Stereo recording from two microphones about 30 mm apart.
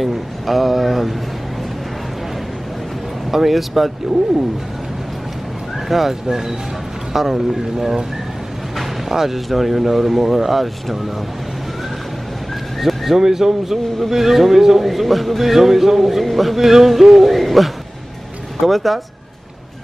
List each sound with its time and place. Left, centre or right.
0.0 s a sound: centre
3.3 s speech: centre
5.9 s speech: centre
9.1 s speech: centre
9.5 s a man's voice: centre
12.8 s a sound: centre
13.2 s a man's voice: centre
18.7 s a man's voice: centre